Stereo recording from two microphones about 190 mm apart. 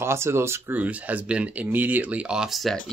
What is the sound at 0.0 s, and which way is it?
Speech, 15° right (ahead or behind).